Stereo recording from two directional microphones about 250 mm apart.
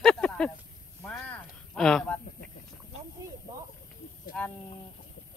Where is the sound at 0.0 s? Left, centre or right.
Centre.